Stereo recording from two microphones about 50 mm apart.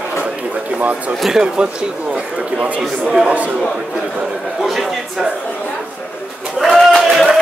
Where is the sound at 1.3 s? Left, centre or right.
Centre.